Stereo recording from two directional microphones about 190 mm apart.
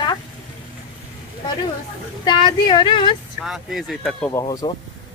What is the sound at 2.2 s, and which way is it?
Speech, 25° left (ahead or behind).